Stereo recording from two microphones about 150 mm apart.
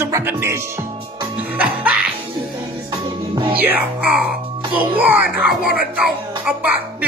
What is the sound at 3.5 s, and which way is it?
Speech, 10° right (ahead or behind).